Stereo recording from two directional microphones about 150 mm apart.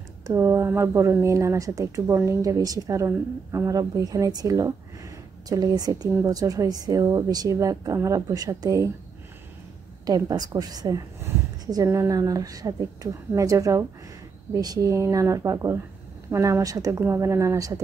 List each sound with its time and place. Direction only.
0.3 s speech: 20° right (ahead or behind)
10.0 s speech: 25° right (ahead or behind)